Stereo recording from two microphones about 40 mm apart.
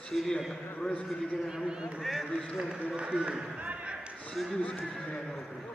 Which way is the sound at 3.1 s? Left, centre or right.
Right.